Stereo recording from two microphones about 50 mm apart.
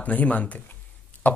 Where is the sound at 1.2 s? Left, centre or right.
Left.